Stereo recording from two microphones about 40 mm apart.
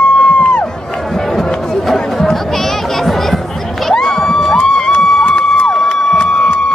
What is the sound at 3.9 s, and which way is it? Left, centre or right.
Crowd, centre.